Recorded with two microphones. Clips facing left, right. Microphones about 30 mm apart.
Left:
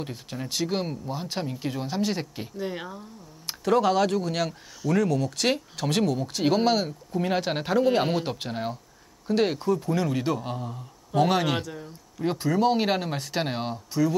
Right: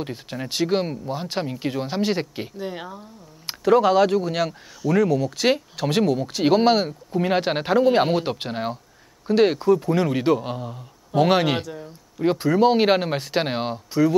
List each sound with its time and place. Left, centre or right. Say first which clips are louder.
0.0 s speech: right 4 dB; centre
2.5 s speech: right 1 dB; centre; by 11.6 s right
11.6 s speech: right 3 dB; centre
12.2 s speech: right 6 dB; right